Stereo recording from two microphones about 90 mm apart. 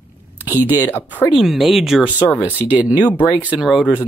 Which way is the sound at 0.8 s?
20° left (ahead or behind).